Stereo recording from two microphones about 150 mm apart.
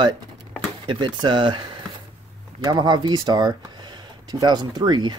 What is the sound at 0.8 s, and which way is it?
Speech, 30° right (ahead or behind).